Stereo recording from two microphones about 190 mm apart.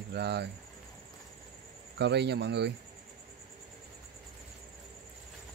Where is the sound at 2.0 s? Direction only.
65° right (ahead or behind).